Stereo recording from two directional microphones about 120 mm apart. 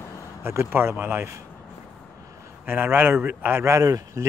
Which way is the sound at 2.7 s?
15° right (ahead or behind).